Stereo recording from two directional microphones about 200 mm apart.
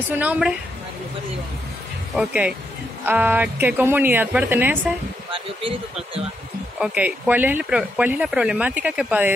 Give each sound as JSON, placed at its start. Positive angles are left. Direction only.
{"t": 0.2, "sound": "a woman's voice", "side_deg": -5}
{"t": 2.1, "sound": "a woman's voice", "side_deg": -5}
{"t": 5.3, "sound": "speech", "side_deg": -25}
{"t": 6.8, "sound": "speech", "side_deg": -5}